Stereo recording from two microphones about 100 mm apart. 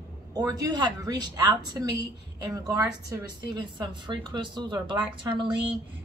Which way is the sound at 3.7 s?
50° right (ahead or behind).